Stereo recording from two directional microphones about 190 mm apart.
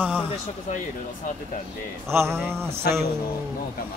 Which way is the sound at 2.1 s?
15° right (ahead or behind).